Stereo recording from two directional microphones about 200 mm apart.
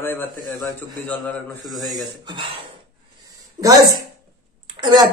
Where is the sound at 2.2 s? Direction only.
25° right (ahead or behind).